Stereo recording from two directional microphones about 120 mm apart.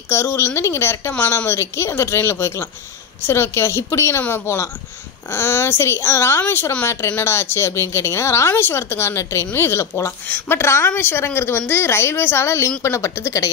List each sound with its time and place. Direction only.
0.1 s a woman's voice: 20° left (ahead or behind)